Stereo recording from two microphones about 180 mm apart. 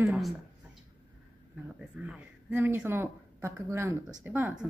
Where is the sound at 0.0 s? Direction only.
5° right (ahead or behind).